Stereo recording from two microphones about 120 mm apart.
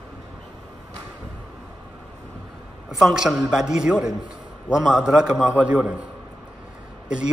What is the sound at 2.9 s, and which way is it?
A woman's voice, 5° right (ahead or behind).